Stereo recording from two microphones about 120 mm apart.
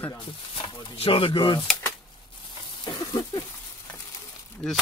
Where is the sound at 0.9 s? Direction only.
50° left (ahead or behind).